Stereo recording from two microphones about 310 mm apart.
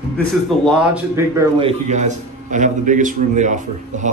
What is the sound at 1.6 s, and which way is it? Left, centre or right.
A man's voice, centre.